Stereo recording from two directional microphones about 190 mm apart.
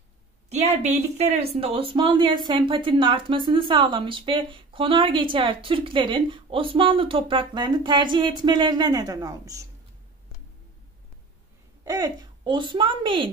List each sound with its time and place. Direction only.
0.5 s speech: 35° right (ahead or behind); by 9.7 s 20° right (ahead or behind)
11.8 s a woman's voice: 20° right (ahead or behind)